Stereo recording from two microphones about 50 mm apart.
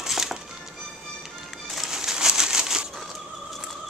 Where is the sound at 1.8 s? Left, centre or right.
Centre.